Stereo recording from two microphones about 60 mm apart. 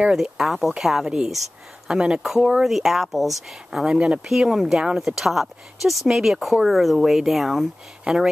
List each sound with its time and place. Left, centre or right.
0.1 s speech: centre
2.2 s speech: centre
3.9 s speech: centre